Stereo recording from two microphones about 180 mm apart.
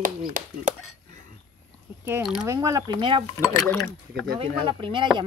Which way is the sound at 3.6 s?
5° left (ahead or behind).